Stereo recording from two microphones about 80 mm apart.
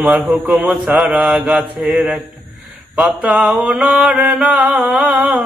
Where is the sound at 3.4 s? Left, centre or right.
Centre.